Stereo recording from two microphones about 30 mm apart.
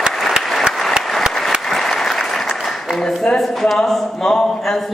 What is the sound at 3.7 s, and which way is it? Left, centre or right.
A man's voice, centre.